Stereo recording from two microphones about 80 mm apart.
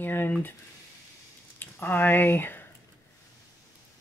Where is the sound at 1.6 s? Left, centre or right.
Left.